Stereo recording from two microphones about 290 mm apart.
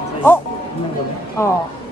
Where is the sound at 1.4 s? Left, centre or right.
Centre.